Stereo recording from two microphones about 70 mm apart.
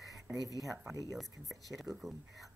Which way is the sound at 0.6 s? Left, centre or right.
Centre.